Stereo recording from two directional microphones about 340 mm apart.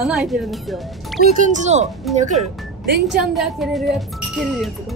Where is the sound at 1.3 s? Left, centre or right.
Right.